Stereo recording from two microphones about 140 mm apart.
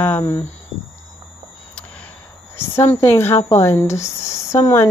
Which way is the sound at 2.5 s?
15° left (ahead or behind).